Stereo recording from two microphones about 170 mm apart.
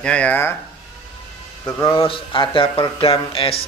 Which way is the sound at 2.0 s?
30° left (ahead or behind).